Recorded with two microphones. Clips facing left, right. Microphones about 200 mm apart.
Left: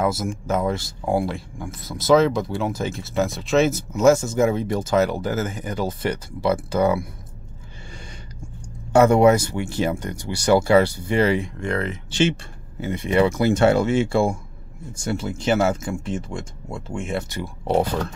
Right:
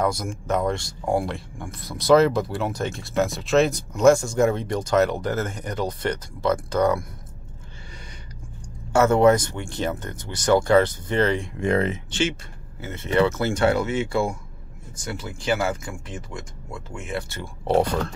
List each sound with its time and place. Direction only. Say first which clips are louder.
0.0 s speech: left 2 dB; 5° left (ahead or behind)
8.9 s speech: left 2 dB; 15° left (ahead or behind)
11.6 s speech: right 3 dB; 20° right (ahead or behind)
12.8 s speech: left 2 dB; 15° left (ahead or behind)
13.7 s speech: left 4 dB; 30° left (ahead or behind)
17.6 s speech: even; centre (ahead or behind)